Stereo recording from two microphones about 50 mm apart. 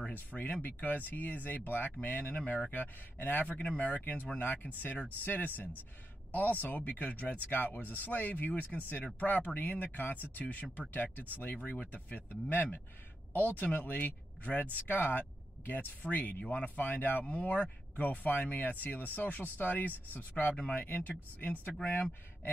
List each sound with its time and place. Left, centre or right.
0.1 s speech: left
2.7 s speech: left
3.5 s speech: left
11.7 s speech: left
12.1 s speech: left